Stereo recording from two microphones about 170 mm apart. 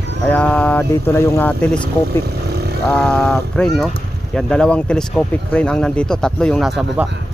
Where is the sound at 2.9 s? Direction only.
10° left (ahead or behind).